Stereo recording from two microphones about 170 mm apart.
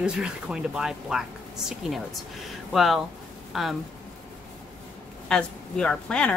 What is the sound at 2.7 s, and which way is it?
Speech, centre (ahead or behind).